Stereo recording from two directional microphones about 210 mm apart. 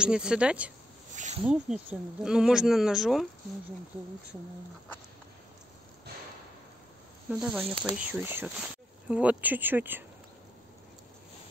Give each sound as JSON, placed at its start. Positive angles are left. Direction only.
{"t": 0.0, "sound": "speech", "side_deg": -5}
{"t": 1.1, "sound": "snake", "side_deg": -35}
{"t": 1.4, "sound": "speech", "side_deg": -5}
{"t": 7.2, "sound": "speech", "side_deg": 0}